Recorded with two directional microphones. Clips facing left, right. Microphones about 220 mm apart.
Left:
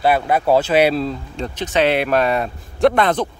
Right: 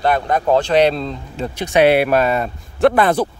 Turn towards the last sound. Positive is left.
turn(degrees=-5)  # may be behind; listen again after turning